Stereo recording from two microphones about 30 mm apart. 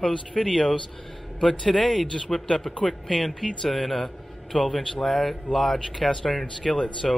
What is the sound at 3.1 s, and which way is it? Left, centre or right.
Speech, centre.